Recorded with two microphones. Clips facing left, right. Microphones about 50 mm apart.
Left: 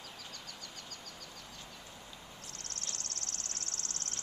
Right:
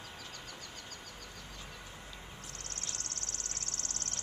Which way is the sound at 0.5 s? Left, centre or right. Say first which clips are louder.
Right 1 dB; right.